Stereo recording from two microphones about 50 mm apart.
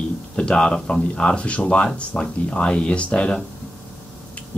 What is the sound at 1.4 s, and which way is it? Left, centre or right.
Speech, left.